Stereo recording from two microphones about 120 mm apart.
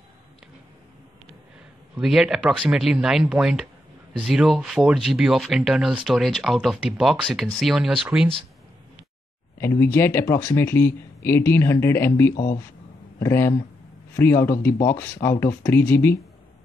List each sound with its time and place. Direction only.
2.0 s speech: 5° right (ahead or behind)
9.6 s speech: 20° left (ahead or behind)